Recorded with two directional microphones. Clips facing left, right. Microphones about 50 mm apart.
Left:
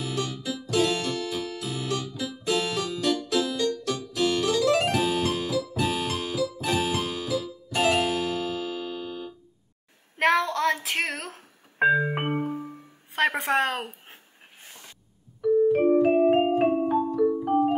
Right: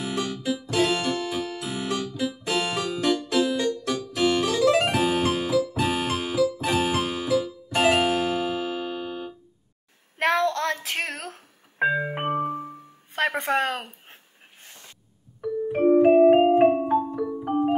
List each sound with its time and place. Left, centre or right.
0.1 s music: right
4.8 s keyboard: right
7.7 s music: right
10.1 s music: centre
13.1 s a sound: centre
15.4 s music: centre
16.9 s marimba: centre